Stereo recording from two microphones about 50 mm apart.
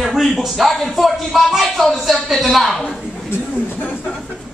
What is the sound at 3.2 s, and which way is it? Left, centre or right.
Speech, left.